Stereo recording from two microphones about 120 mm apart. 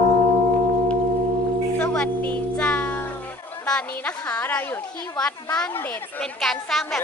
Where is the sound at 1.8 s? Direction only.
10° left (ahead or behind).